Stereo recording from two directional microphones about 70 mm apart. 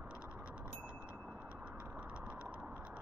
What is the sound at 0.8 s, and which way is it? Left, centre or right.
Wind chime, centre.